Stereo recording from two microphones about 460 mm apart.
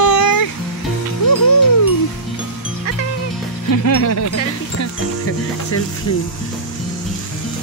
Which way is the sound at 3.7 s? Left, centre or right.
Left.